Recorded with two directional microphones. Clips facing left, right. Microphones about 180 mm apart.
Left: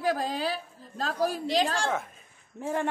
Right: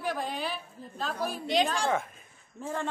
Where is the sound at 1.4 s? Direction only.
Centre (ahead or behind).